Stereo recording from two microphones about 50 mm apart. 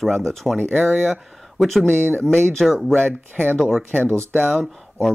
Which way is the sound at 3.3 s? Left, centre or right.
Right.